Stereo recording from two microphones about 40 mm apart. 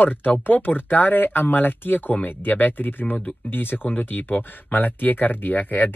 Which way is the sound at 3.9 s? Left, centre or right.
Left.